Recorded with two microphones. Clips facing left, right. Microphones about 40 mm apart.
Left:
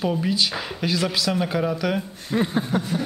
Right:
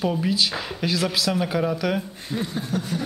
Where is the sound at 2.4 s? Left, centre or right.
Left.